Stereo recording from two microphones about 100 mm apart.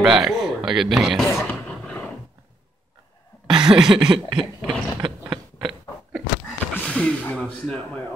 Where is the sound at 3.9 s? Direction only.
50° right (ahead or behind).